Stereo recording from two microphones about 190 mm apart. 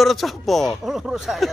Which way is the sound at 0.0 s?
Centre (ahead or behind).